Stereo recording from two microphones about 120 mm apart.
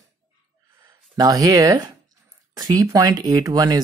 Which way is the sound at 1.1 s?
30° right (ahead or behind).